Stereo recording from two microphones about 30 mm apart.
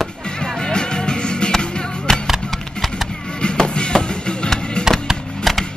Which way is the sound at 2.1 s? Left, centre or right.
Centre.